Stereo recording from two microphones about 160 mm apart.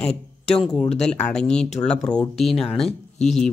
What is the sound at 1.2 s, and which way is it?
Speech, 5° left (ahead or behind).